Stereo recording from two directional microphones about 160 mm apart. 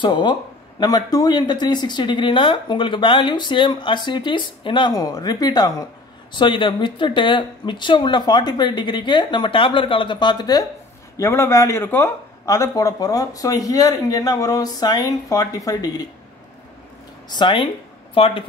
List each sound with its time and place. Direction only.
0.0 s speech: 30° left (ahead or behind)
17.3 s speech: 30° left (ahead or behind)